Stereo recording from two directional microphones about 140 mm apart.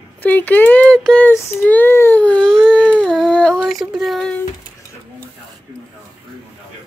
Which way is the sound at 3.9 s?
Centre (ahead or behind).